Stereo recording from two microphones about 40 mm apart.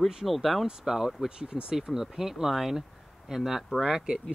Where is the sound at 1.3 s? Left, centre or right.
Right.